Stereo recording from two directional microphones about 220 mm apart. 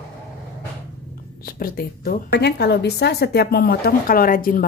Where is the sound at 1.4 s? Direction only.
40° left (ahead or behind).